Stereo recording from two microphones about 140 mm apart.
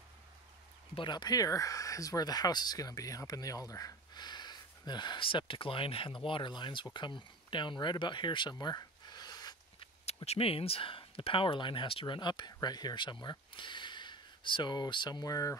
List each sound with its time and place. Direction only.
0.9 s speech: 30° left (ahead or behind)
10.0 s speech: 50° left (ahead or behind); by 15.5 s 25° left (ahead or behind)